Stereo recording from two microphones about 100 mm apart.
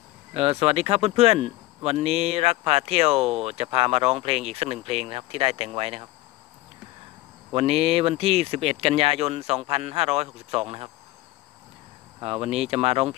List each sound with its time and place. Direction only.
0.3 s speech: 75° right (ahead or behind); by 3.3 s 90° right
3.4 s speech: 80° right
7.5 s speech: 85° right
12.2 s speech: 85° right